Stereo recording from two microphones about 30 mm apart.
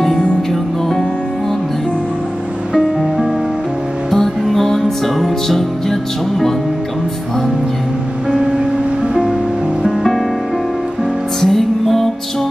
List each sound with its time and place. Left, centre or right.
4.1 s music: centre
8.4 s music: right
11.4 s music: centre